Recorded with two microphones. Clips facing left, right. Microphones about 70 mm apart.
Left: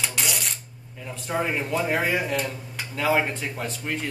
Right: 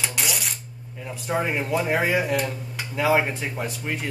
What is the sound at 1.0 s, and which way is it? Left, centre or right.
Speech, centre.